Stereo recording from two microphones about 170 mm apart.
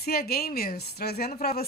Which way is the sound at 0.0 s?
65° left (ahead or behind).